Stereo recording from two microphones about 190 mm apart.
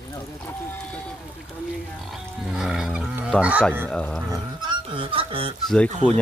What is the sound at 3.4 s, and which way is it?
Speech, 5° right (ahead or behind).